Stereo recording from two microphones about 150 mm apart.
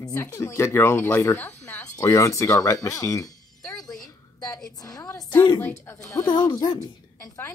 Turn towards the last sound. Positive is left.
turn(degrees=15)  # may be behind; listen again after turning